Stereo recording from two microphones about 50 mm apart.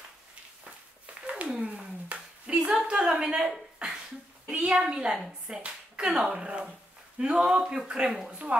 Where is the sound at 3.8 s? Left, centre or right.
Centre.